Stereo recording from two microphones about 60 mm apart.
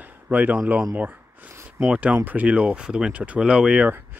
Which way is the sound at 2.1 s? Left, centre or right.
Right.